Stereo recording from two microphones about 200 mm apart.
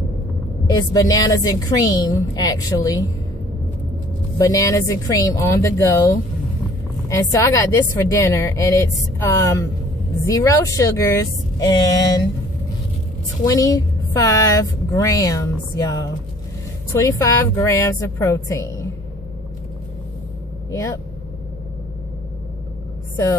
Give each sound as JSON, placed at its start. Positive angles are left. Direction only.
{"t": 0.7, "sound": "a woman's voice", "side_deg": 20}
{"t": 4.4, "sound": "a woman's voice", "side_deg": 15}
{"t": 7.1, "sound": "a woman's voice", "side_deg": 15}
{"t": 13.5, "sound": "a woman's voice", "side_deg": 15}
{"t": 20.7, "sound": "a woman's voice", "side_deg": 15}